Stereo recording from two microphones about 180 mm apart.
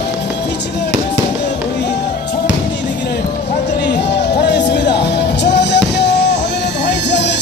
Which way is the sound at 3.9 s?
70° left (ahead or behind).